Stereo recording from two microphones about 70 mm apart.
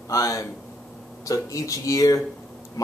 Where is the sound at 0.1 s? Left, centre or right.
Left.